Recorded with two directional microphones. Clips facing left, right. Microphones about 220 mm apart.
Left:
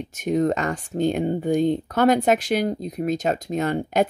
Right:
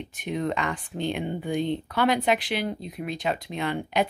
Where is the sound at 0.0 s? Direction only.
45° left (ahead or behind).